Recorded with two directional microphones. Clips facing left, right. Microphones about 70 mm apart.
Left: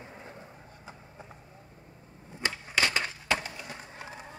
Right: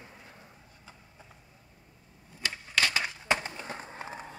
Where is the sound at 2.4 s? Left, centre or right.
Left.